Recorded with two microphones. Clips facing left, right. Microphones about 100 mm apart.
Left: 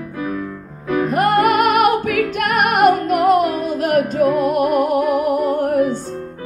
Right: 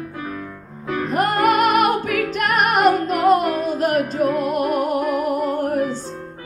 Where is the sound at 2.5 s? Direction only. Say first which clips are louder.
Left 2 dB; 50° left (ahead or behind).